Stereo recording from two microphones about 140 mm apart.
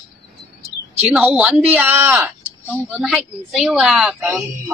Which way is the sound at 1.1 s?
5° right (ahead or behind).